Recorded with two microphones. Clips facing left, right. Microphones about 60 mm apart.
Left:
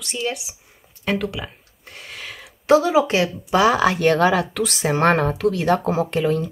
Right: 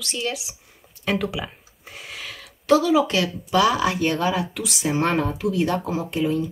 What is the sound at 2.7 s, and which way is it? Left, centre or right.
A woman's voice, left.